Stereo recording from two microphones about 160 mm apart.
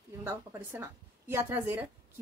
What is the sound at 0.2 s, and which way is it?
Speech, 15° right (ahead or behind).